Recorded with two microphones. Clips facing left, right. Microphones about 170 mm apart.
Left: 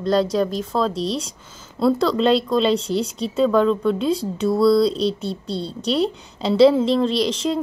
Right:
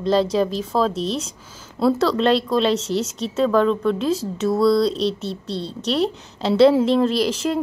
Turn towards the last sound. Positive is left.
turn(degrees=-5)  # may be behind; listen again after turning